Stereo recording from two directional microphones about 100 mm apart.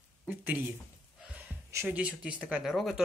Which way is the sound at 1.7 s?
25° right (ahead or behind).